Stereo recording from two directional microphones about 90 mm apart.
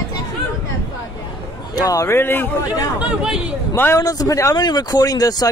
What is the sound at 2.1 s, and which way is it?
Speech, 25° left (ahead or behind).